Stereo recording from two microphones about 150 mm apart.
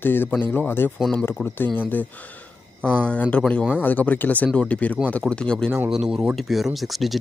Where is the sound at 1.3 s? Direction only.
15° left (ahead or behind).